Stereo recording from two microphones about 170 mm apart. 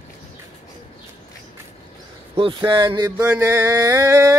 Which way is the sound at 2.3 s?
30° right (ahead or behind).